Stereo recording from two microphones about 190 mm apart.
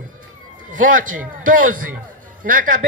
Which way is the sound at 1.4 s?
45° right (ahead or behind).